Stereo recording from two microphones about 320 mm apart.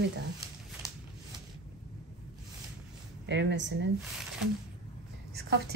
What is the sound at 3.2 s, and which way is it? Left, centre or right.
Speech, right.